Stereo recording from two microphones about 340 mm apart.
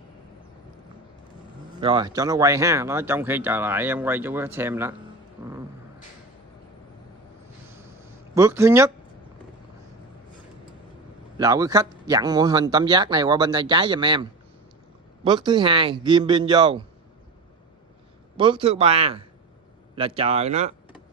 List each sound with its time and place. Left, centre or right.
1.8 s speech: centre
8.4 s speech: centre
11.3 s speech: centre
15.2 s speech: centre
18.3 s speech: centre